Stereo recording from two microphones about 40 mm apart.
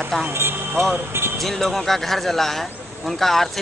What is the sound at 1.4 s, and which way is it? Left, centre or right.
A man's voice, centre.